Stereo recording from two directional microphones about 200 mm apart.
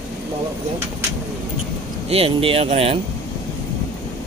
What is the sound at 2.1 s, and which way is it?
Speech, 30° right (ahead or behind).